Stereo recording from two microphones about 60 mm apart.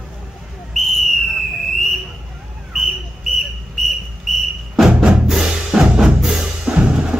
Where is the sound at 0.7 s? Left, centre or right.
Centre.